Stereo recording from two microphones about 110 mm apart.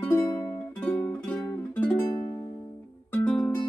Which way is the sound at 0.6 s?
15° left (ahead or behind).